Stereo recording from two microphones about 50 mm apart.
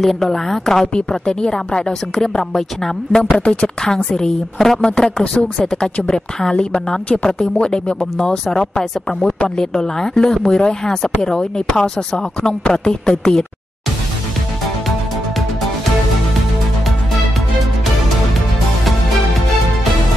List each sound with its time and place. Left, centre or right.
0.0 s speech: centre
4.8 s speech: left
5.3 s speech: centre